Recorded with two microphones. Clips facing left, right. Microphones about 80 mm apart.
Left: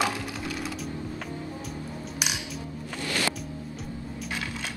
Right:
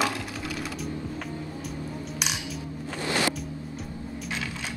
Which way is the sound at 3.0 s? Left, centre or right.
Right.